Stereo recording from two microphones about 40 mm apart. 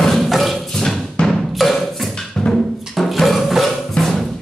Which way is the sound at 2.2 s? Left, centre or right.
Centre.